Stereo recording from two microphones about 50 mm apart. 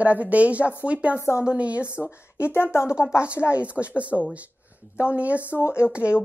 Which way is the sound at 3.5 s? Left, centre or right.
Right.